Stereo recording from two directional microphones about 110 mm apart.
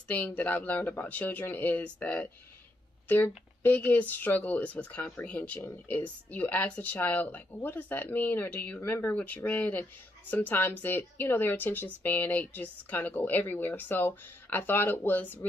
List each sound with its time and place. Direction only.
0.1 s speech: 15° left (ahead or behind)